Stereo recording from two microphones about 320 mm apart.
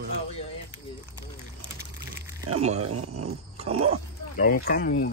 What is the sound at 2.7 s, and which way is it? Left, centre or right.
Speech, right.